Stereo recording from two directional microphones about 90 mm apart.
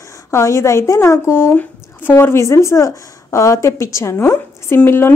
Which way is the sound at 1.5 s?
20° left (ahead or behind).